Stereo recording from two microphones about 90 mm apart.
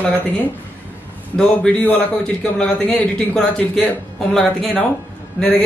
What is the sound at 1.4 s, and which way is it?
A man's voice, 15° left (ahead or behind).